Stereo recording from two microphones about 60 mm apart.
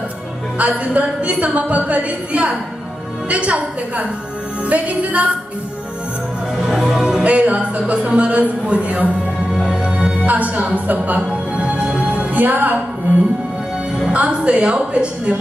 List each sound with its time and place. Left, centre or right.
0.6 s music: right
6.5 s speech: centre
9.7 s music: centre
10.2 s a woman's voice: right
14.1 s music: right